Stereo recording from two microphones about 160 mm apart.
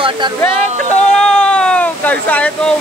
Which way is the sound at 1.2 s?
5° left (ahead or behind).